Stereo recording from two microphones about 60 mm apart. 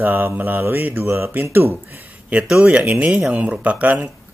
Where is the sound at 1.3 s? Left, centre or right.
Right.